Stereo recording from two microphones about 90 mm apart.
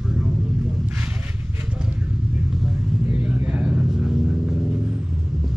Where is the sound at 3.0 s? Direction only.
15° right (ahead or behind).